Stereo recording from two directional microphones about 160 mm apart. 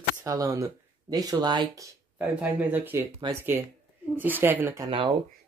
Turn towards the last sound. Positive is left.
turn(degrees=-35)  # may be behind; listen again after turning